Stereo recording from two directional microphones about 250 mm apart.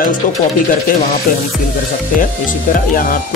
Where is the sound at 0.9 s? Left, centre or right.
Left.